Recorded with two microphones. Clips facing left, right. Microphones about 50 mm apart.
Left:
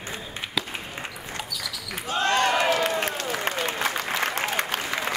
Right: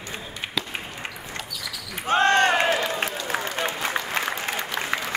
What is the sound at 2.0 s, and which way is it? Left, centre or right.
Basketball bounce, right.